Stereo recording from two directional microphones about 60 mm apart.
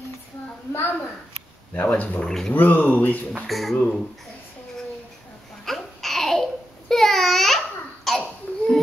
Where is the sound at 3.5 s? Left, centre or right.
Centre.